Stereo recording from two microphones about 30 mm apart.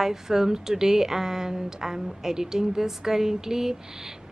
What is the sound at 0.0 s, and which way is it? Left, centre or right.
Speech, centre.